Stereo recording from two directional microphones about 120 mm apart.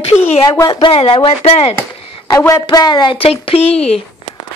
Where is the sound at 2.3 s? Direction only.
25° left (ahead or behind); by 3.3 s 45° left (ahead or behind).